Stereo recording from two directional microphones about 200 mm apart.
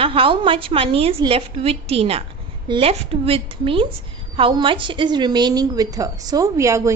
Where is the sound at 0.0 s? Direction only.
25° right (ahead or behind).